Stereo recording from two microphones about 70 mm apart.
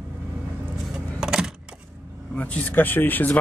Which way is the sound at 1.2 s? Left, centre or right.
Centre.